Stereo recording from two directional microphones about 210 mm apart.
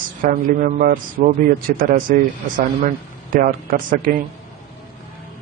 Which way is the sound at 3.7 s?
40° right (ahead or behind).